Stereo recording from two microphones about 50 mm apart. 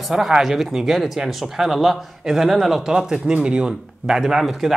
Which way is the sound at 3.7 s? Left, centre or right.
Centre.